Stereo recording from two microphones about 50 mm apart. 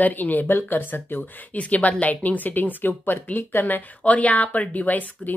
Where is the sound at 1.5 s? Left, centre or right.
Left.